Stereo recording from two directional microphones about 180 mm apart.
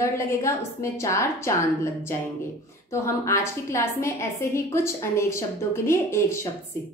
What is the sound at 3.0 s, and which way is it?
A woman's voice, 15° left (ahead or behind).